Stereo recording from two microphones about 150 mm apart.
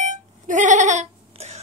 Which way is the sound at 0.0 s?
55° right (ahead or behind).